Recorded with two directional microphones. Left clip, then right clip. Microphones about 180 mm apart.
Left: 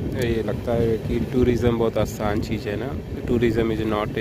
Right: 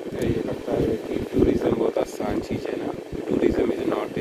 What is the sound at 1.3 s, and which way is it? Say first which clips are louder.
Speech: even; 15° left (ahead or behind).